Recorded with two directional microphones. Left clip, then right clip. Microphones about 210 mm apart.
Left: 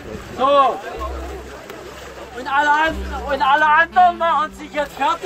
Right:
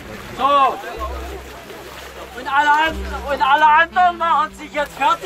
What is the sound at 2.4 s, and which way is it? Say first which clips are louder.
Speech: right 1 dB; 45° left (ahead or behind).